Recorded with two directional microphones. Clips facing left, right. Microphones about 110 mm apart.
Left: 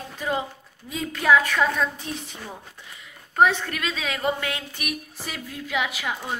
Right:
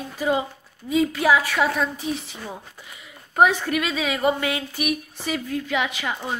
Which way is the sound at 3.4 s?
10° right (ahead or behind).